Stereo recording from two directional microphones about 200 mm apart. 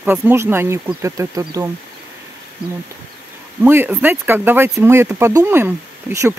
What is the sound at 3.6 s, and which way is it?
Speech, 10° right (ahead or behind).